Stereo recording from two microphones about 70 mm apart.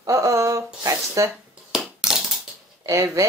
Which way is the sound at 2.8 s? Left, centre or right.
Right.